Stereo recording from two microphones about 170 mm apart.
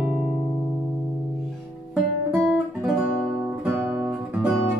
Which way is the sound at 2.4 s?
5° right (ahead or behind).